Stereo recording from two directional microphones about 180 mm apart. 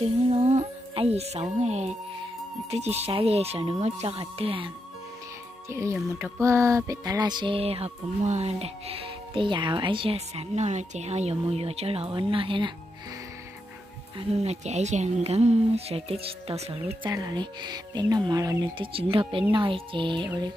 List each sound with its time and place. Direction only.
0.0 s music: 35° right (ahead or behind)
5.7 s speech: 15° right (ahead or behind)
6.4 s music: 15° right (ahead or behind)
14.1 s music: 35° right (ahead or behind)
19.5 s speech: 30° right (ahead or behind)